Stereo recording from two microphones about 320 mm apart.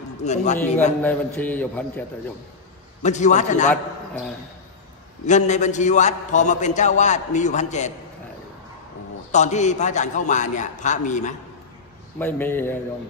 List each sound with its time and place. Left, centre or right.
0.2 s a man's voice: left
1.0 s a man's voice: centre
3.0 s a man's voice: left
5.2 s a man's voice: left
9.3 s a man's voice: left
12.2 s speech: centre